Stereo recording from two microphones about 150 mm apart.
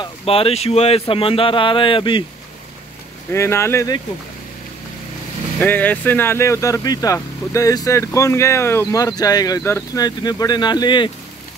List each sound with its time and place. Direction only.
0.0 s speech: 40° left (ahead or behind)
3.3 s speech: 20° left (ahead or behind)
5.6 s speech: 10° left (ahead or behind); by 11.1 s 30° left (ahead or behind)